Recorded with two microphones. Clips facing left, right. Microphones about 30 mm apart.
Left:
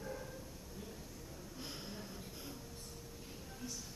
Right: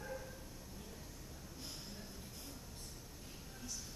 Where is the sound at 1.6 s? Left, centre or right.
Centre.